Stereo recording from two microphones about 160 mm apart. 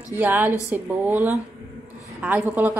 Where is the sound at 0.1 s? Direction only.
10° right (ahead or behind).